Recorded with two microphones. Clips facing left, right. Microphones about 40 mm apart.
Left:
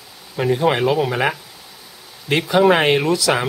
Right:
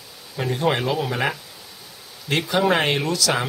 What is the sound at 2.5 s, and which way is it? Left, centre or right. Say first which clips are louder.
Speech: left 6 dB; centre.